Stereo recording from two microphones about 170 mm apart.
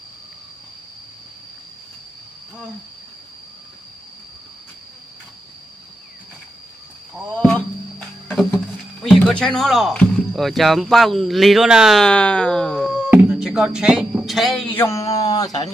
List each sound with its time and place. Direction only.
7.3 s music: 5° left (ahead or behind)
9.0 s a man's voice: 5° left (ahead or behind)
14.8 s a sound: 15° left (ahead or behind)